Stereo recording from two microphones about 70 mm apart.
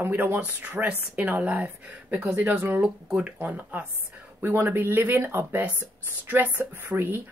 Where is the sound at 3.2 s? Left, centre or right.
Right.